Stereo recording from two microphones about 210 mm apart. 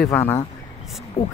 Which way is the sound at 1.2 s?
30° left (ahead or behind).